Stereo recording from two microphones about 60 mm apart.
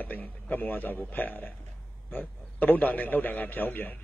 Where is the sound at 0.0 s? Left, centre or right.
Left.